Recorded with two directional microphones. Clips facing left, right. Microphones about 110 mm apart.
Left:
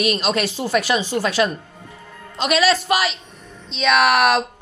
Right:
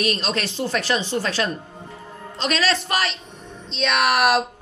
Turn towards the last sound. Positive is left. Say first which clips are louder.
# left 3 dB
turn(degrees=0)  # may be behind; listen again after turning